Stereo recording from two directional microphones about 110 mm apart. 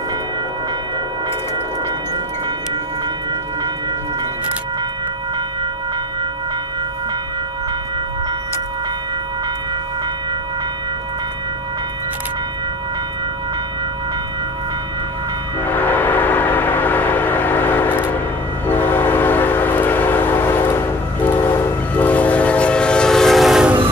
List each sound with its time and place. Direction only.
15.6 s train: 15° left (ahead or behind); by 23.7 s centre (ahead or behind)